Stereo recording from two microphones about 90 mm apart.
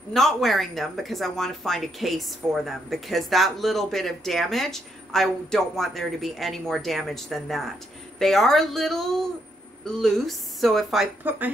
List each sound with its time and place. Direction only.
0.1 s speech: 5° left (ahead or behind)
11.2 s speech: 20° right (ahead or behind)